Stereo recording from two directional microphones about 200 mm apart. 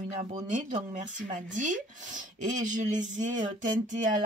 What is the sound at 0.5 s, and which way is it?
Speech, 40° right (ahead or behind).